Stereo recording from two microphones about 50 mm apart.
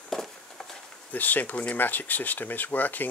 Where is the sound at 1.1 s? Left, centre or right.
Left.